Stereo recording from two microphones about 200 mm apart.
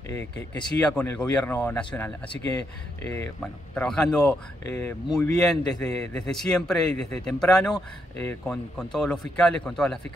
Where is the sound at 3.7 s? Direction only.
5° left (ahead or behind).